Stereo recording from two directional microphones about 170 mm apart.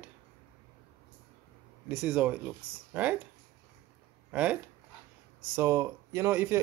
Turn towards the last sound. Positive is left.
turn(degrees=-15)  # may be behind; listen again after turning